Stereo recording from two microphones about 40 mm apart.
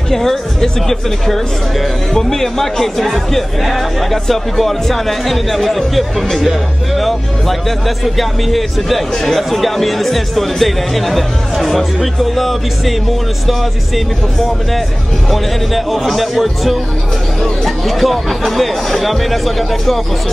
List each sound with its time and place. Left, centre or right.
0.1 s speech: centre